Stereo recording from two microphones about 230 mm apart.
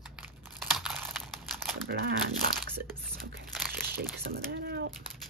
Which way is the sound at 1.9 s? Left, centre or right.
Right.